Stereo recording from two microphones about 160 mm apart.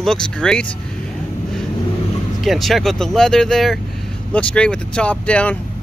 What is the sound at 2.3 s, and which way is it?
Speech, centre (ahead or behind).